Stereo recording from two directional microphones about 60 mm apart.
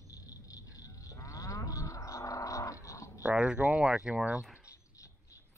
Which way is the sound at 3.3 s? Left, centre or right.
Centre.